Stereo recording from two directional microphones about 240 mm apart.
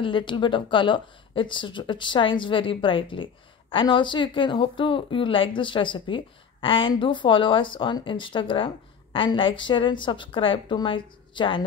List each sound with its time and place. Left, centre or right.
0.0 s speech: centre